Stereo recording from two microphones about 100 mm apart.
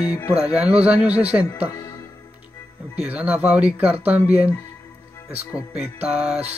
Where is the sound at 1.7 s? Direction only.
35° left (ahead or behind).